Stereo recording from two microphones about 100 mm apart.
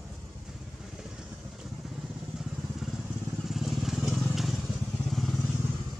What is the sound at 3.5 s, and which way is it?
Vehicle, centre (ahead or behind).